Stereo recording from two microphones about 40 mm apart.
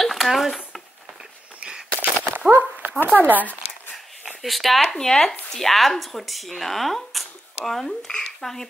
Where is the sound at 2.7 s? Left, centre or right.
Right.